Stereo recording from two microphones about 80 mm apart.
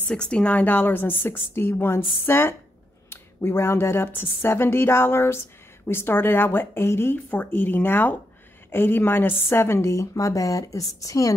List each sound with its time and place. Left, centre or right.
0.1 s a woman's voice: centre; by 11.3 s left